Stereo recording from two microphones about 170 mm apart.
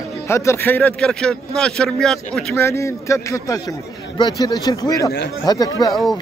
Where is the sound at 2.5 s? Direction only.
15° left (ahead or behind).